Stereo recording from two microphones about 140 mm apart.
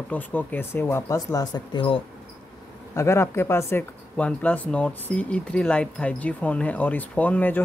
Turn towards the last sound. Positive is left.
turn(degrees=15)  # may be behind; listen again after turning